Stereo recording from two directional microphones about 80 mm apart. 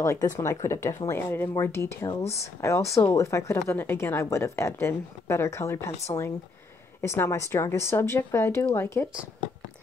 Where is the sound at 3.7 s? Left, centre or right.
Left.